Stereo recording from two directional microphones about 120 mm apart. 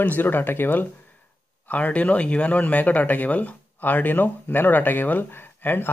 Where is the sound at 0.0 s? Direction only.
15° left (ahead or behind).